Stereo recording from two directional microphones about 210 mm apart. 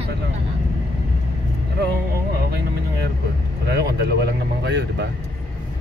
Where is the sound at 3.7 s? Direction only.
50° right (ahead or behind).